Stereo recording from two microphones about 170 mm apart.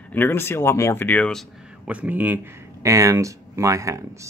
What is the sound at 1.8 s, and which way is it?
A man's voice, 10° right (ahead or behind).